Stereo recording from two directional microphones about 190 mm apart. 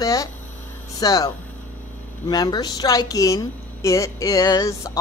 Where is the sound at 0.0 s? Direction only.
15° left (ahead or behind).